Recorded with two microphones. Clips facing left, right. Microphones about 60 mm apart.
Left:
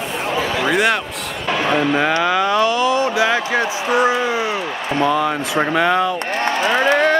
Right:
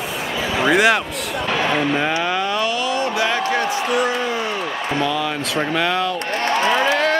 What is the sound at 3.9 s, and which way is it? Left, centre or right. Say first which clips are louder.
Speech: left 7 dB; left.